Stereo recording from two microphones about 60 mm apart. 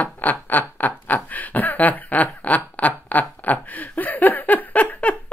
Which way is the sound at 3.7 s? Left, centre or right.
Left.